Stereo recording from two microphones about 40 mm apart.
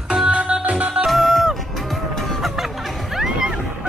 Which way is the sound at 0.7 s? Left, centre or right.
Right.